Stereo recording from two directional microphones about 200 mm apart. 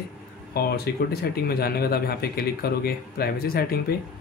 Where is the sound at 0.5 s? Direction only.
50° left (ahead or behind).